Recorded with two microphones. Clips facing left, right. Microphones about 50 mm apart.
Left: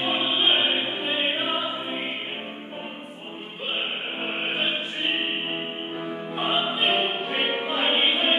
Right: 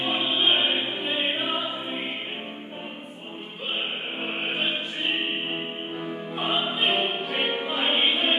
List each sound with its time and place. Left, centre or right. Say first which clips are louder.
0.0 s music: left 1 dB; centre
4.2 s music: left 1 dB; centre